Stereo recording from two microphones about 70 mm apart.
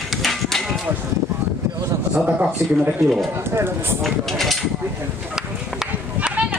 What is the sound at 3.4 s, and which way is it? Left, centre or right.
Speech, right.